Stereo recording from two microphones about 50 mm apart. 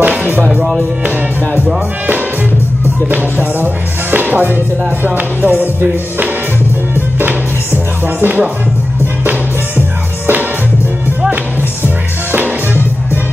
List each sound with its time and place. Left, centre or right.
0.0 s music: right
3.1 s speech: right
7.2 s music: right
11.8 s music: right